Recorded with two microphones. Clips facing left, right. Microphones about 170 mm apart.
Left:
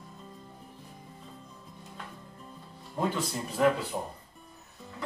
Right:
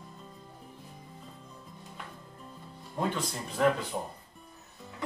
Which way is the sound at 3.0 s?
5° left (ahead or behind).